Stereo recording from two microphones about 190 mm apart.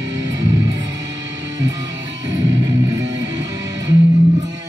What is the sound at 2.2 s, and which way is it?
Music, 75° right (ahead or behind).